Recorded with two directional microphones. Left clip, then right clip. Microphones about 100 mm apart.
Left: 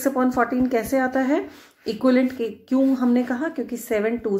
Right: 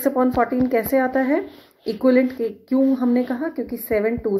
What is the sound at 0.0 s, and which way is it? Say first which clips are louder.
A woman's voice: right 2 dB; 10° right (ahead or behind).